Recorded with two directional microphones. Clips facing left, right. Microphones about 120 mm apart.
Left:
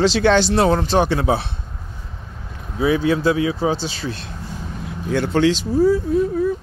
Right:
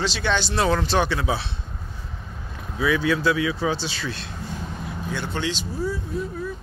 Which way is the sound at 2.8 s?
45° left (ahead or behind).